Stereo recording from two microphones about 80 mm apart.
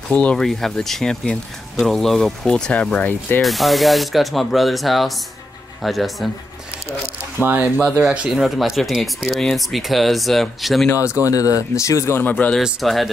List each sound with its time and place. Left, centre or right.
0.1 s speech: centre
3.4 s speech: centre
7.3 s speech: right
8.3 s speech: centre
11.2 s speech: left
12.2 s a man's voice: left
12.8 s speech: centre